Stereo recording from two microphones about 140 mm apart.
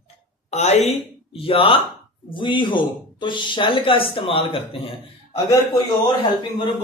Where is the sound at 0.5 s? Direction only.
50° left (ahead or behind).